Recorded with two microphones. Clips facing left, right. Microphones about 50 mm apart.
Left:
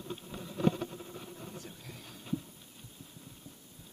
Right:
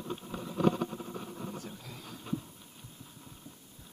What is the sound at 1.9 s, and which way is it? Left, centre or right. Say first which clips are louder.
Train: right 3 dB; right.